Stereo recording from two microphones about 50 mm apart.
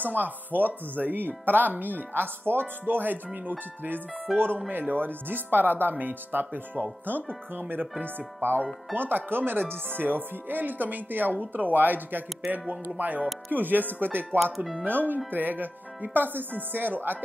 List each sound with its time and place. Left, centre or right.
0.0 s speech: right
4.3 s speech: centre
4.6 s speech: right
14.6 s speech: centre
14.9 s speech: right